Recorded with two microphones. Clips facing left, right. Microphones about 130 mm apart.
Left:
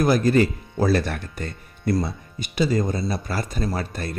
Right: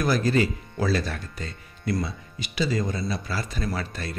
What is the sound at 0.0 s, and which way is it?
A man's voice, 45° left (ahead or behind).